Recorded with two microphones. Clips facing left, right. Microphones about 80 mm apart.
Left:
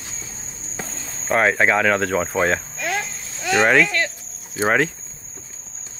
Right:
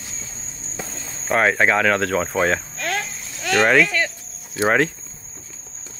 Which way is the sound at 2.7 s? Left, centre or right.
Centre.